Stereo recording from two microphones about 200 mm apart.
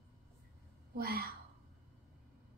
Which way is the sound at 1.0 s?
50° right (ahead or behind).